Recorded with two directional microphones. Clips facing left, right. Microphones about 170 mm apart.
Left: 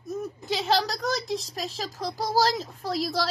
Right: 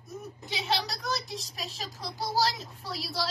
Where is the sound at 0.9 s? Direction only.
90° left.